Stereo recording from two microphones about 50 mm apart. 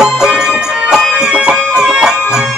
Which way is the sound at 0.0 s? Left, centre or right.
Centre.